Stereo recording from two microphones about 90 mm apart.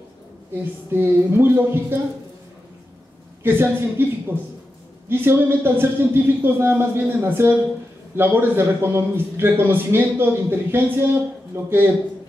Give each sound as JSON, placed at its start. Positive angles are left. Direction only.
{"t": 0.9, "sound": "a man's voice", "side_deg": -25}
{"t": 3.4, "sound": "a man's voice", "side_deg": -25}
{"t": 5.1, "sound": "a man's voice", "side_deg": -25}